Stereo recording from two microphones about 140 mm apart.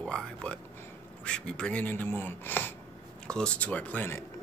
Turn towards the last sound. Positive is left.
turn(degrees=15)  # may be behind; listen again after turning